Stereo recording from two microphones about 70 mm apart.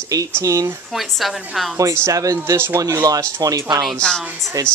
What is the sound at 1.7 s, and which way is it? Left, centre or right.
Speech, right.